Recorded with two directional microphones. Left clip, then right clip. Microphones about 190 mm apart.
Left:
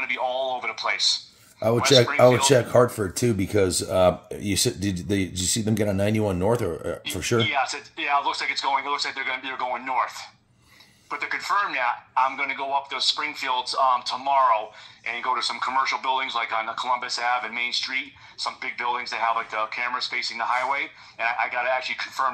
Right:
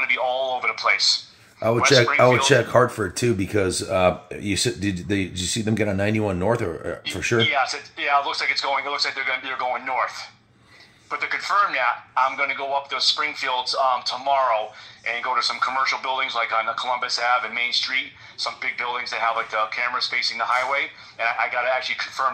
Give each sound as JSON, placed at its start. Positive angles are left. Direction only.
{"t": 0.0, "sound": "a sound", "side_deg": 5}
{"t": 1.6, "sound": "speech", "side_deg": 35}
{"t": 7.3, "sound": "speech", "side_deg": -5}